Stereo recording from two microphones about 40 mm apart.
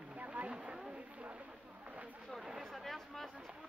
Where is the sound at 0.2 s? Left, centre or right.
Right.